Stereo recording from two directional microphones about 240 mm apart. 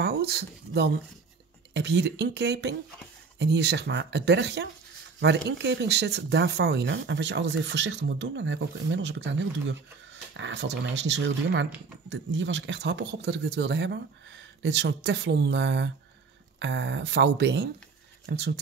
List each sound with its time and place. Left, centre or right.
0.0 s speech: right